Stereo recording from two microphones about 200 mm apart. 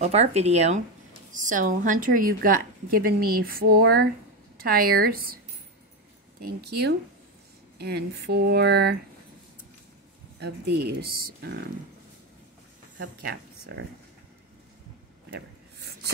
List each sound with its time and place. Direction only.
0.0 s a woman's voice: 35° right (ahead or behind)
6.4 s a woman's voice: 55° right (ahead or behind)
10.4 s speech: 55° right (ahead or behind)
13.0 s speech: 50° right (ahead or behind)
15.3 s a sound: 55° right (ahead or behind)